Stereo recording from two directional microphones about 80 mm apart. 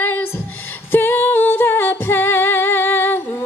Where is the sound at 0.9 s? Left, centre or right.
Left.